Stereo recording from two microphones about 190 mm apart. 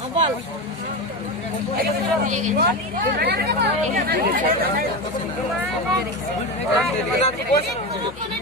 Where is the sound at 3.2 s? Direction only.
55° right (ahead or behind).